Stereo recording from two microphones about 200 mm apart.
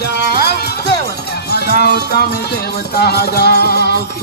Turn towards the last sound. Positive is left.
turn(degrees=55)  # may be behind; listen again after turning